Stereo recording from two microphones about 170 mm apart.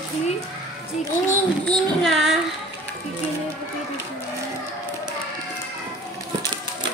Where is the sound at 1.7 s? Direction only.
Centre (ahead or behind).